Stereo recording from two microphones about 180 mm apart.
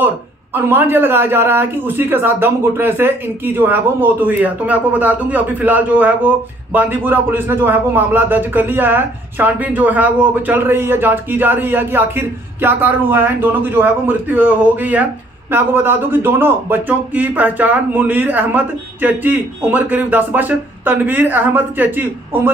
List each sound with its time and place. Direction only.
0.6 s a man's voice: 10° right (ahead or behind)